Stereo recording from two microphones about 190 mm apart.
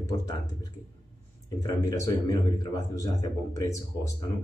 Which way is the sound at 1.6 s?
15° left (ahead or behind).